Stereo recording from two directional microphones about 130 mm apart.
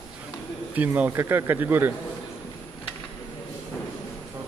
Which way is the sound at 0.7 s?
10° right (ahead or behind).